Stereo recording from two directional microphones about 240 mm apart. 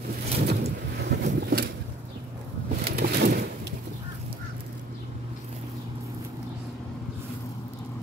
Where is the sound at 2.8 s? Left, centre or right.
Right.